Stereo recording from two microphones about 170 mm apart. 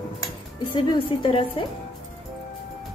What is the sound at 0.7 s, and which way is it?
Speech, 30° left (ahead or behind).